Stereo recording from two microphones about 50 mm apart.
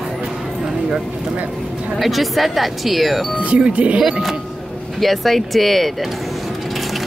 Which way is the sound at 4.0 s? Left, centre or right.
Centre.